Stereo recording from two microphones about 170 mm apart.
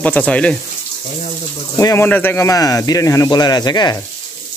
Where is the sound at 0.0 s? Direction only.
10° left (ahead or behind).